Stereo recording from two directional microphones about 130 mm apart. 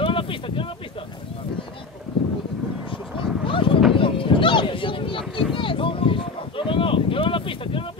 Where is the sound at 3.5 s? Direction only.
40° left (ahead or behind).